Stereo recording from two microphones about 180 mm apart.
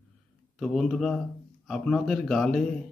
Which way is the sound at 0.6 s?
5° left (ahead or behind).